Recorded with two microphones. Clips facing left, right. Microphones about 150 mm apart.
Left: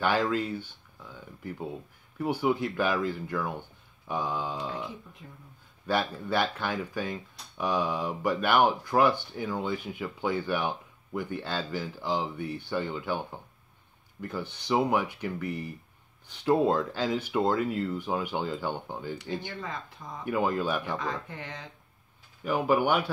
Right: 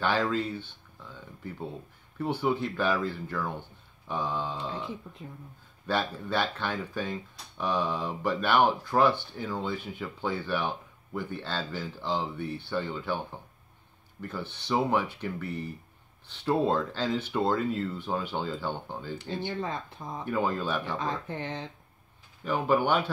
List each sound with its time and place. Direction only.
0.0 s speech: 10° left (ahead or behind)
2.1 s speech: 10° left (ahead or behind)
14.2 s speech: 15° left (ahead or behind)
20.2 s speech: 10° left (ahead or behind)
21.0 s speech: 30° right (ahead or behind)
22.4 s speech: 10° left (ahead or behind)